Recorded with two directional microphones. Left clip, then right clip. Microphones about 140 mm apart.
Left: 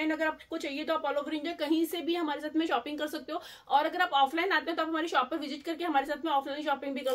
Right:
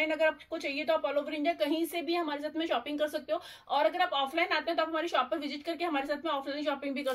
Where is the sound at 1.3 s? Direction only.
45° left (ahead or behind).